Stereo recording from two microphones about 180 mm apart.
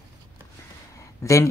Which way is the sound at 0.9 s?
15° left (ahead or behind).